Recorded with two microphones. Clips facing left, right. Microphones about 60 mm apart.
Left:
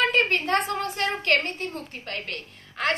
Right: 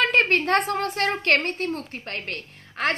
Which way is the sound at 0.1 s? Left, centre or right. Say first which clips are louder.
Right 3 dB; right.